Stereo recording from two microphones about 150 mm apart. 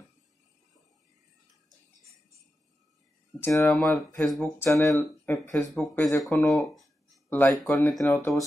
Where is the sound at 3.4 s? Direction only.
20° left (ahead or behind).